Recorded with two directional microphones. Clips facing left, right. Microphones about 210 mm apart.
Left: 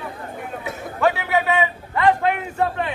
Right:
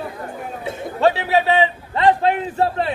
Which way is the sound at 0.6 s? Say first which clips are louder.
Right 3 dB; 30° right (ahead or behind).